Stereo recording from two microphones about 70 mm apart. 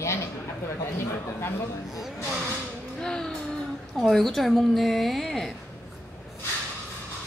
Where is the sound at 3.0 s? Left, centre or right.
Centre.